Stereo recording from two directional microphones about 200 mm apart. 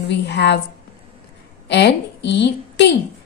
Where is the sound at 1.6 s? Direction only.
60° left (ahead or behind).